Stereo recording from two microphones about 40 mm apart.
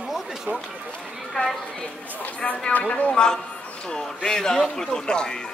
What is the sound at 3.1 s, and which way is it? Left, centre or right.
A man's voice, centre.